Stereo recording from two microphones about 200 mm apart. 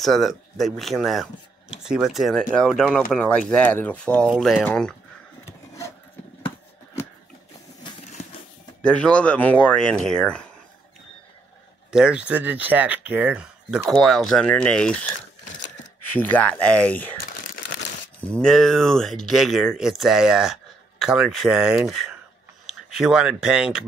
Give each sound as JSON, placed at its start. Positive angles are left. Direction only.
{"t": 0.0, "sound": "speech", "side_deg": 0}
{"t": 8.8, "sound": "speech", "side_deg": 5}
{"t": 11.9, "sound": "speech", "side_deg": -5}
{"t": 16.2, "sound": "speech", "side_deg": 10}
{"t": 17.3, "sound": "crumpling", "side_deg": 45}
{"t": 18.3, "sound": "speech", "side_deg": 5}